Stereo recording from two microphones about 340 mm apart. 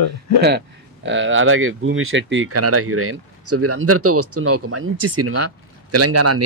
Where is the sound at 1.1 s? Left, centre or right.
Right.